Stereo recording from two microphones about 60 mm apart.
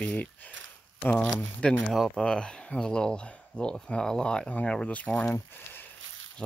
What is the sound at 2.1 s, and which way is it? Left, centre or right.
Speech, centre.